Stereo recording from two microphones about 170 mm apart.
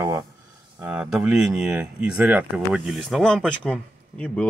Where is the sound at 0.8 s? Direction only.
5° right (ahead or behind).